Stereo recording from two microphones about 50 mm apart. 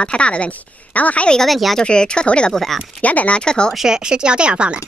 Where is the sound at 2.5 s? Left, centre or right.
Centre.